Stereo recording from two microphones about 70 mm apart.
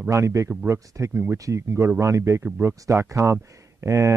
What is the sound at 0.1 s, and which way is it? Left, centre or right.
Speech, right.